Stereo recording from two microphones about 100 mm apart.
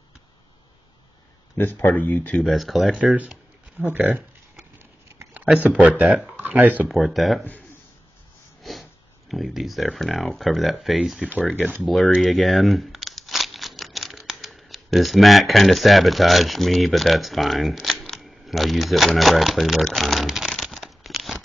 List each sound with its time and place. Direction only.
1.6 s speech: 20° left (ahead or behind)
2.4 s speech: centre (ahead or behind)
3.2 s a sound: 15° right (ahead or behind)
5.7 s speech: 15° right (ahead or behind)
6.9 s speech: centre (ahead or behind)
9.3 s speech: centre (ahead or behind)
11.8 s a sound: centre (ahead or behind)
14.3 s speech: centre (ahead or behind)